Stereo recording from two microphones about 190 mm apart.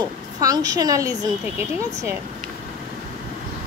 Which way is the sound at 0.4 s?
20° right (ahead or behind).